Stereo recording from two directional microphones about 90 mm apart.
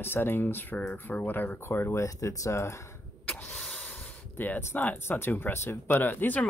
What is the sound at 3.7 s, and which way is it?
Speech, 20° left (ahead or behind).